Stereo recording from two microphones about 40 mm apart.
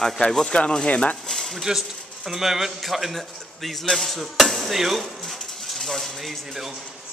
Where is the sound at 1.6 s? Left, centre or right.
Centre.